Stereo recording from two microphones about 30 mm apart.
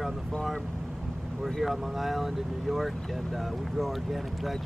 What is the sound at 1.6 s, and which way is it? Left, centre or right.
Speech, centre.